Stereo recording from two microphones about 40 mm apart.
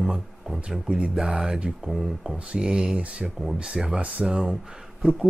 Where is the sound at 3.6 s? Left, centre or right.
Centre.